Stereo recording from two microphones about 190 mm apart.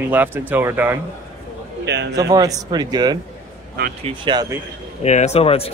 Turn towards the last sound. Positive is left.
turn(degrees=30)  # may be behind; listen again after turning